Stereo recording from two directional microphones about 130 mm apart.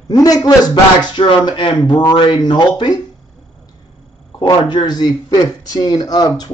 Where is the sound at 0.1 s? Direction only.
30° left (ahead or behind).